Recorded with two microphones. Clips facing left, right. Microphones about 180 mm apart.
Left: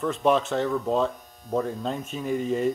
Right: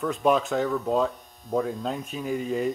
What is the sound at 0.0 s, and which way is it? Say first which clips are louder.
Speech: even; centre (ahead or behind).